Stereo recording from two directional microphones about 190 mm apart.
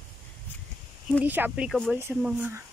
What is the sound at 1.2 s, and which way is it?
Speech, 10° right (ahead or behind).